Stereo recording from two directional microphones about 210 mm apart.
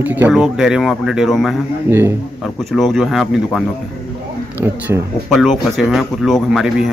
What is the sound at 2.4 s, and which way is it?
Speech, centre (ahead or behind).